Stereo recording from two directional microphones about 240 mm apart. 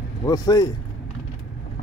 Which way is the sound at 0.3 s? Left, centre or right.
Centre.